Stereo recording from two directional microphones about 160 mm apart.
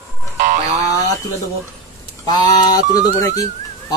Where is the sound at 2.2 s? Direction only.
25° left (ahead or behind).